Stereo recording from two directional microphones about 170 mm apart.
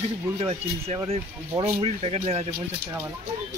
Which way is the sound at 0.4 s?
35° right (ahead or behind).